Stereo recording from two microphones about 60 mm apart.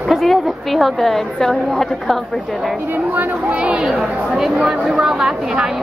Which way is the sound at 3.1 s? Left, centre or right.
Right.